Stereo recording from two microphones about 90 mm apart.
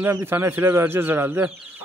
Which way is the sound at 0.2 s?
25° right (ahead or behind).